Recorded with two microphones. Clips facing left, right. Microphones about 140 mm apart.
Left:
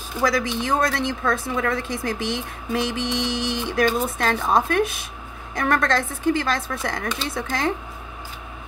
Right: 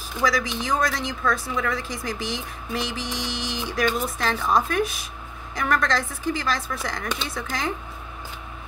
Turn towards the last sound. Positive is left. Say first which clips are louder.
# left 4 dB
turn(degrees=55)  # may be behind; listen again after turning